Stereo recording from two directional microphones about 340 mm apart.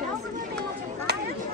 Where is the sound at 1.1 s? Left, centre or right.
Right.